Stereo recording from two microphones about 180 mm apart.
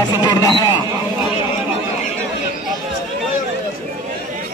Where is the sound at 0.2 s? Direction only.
25° left (ahead or behind).